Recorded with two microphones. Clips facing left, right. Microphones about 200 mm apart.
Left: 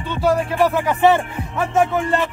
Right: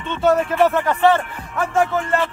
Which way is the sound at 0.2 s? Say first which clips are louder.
Right 1 dB; centre (ahead or behind).